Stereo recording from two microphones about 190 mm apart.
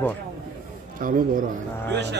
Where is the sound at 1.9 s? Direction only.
65° right (ahead or behind).